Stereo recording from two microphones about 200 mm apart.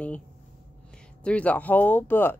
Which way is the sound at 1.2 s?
5° left (ahead or behind).